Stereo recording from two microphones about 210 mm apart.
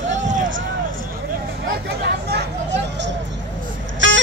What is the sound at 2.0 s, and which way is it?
Chatter, 50° right (ahead or behind).